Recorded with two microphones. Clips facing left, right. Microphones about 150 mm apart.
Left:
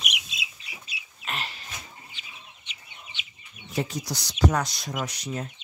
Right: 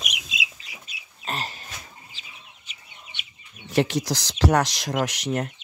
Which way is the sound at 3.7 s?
80° right.